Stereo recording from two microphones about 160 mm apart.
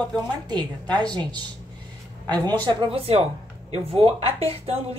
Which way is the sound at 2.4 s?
25° right (ahead or behind).